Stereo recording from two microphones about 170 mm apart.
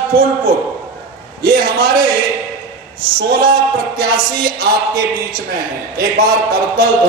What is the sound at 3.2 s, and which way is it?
Speech, 65° right (ahead or behind).